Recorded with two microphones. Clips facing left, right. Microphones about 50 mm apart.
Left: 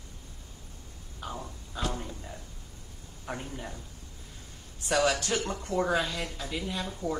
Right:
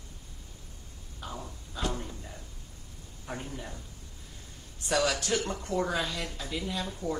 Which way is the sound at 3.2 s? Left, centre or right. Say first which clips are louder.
Left 1 dB; centre.